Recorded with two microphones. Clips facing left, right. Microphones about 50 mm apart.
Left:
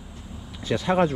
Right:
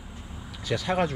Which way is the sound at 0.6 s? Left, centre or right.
Left.